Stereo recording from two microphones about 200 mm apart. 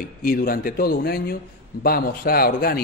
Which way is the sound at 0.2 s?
45° left (ahead or behind).